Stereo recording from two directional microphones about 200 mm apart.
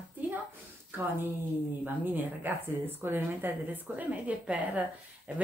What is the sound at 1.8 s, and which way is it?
Speech, 10° right (ahead or behind).